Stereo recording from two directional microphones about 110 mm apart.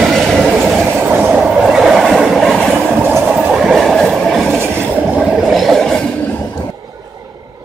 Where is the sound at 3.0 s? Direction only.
20° right (ahead or behind).